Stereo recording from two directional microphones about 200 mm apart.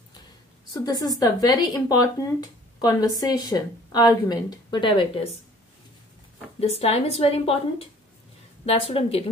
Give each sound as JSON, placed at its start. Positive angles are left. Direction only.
{"t": 0.7, "sound": "speech", "side_deg": 20}
{"t": 6.6, "sound": "a woman's voice", "side_deg": 30}
{"t": 8.6, "sound": "speech", "side_deg": 30}